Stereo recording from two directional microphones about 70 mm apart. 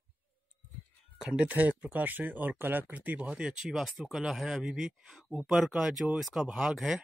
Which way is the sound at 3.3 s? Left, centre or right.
Centre.